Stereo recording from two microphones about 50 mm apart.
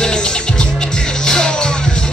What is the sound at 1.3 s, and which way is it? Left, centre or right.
Music, centre.